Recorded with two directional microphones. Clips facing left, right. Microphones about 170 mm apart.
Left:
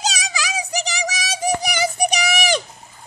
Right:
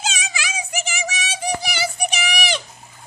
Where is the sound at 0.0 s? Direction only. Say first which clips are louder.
Left 3 dB; 35° left (ahead or behind).